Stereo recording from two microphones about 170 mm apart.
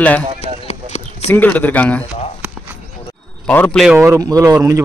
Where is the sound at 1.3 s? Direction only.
10° left (ahead or behind).